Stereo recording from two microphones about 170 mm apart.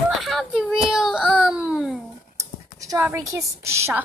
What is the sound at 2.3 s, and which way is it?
Speech, 20° right (ahead or behind).